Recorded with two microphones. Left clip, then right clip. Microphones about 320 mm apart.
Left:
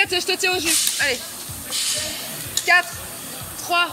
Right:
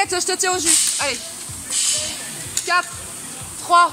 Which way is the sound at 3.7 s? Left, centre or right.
Centre.